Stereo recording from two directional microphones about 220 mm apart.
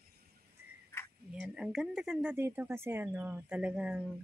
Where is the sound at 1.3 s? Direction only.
5° right (ahead or behind).